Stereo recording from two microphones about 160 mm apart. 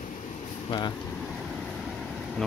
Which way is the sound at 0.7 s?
25° left (ahead or behind).